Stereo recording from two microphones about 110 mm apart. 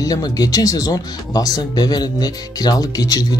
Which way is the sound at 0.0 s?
35° left (ahead or behind).